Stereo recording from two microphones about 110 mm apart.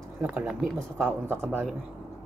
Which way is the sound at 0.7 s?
20° right (ahead or behind).